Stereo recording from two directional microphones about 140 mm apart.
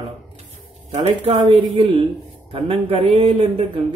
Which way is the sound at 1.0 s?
50° right (ahead or behind).